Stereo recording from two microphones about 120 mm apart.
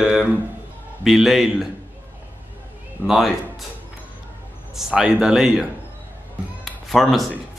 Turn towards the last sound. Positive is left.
turn(degrees=0)  # may be behind; listen again after turning